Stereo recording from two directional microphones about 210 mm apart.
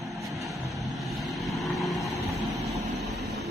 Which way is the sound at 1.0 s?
Centre (ahead or behind).